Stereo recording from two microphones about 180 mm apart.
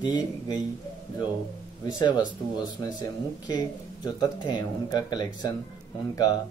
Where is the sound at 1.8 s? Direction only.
25° left (ahead or behind).